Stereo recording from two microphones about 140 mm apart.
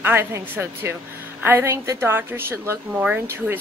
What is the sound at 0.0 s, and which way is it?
A woman's voice, 15° right (ahead or behind).